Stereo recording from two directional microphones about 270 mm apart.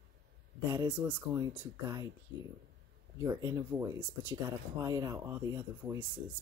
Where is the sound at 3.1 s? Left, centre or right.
Centre.